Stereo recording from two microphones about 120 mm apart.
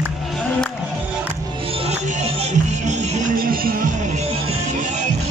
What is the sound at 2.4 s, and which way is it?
Music, 75° right (ahead or behind).